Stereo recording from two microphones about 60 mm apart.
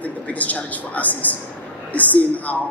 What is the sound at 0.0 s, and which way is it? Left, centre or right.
A man's voice, left.